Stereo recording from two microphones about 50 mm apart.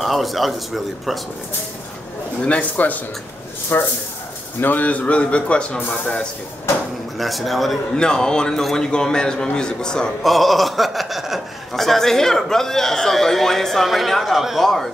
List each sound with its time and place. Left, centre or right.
0.0 s a man's voice: centre
2.8 s a man's voice: left; by 6.2 s centre
7.2 s a man's voice: centre
7.9 s a man's voice: centre
10.2 s a sound: centre
11.7 s a man's voice: centre
14.6 s a man's voice: centre